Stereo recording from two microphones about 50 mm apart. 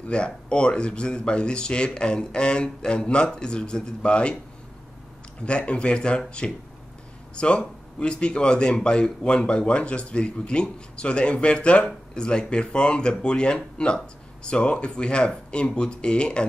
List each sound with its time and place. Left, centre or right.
0.0 s a man's voice: left
5.4 s a man's voice: left